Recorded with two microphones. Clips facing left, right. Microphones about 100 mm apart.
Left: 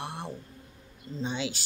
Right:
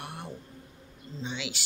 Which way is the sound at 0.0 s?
30° left (ahead or behind).